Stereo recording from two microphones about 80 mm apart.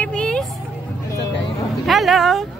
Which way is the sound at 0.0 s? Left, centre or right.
Centre.